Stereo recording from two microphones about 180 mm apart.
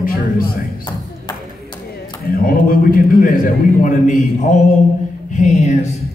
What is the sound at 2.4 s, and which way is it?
A man's voice, 55° left (ahead or behind).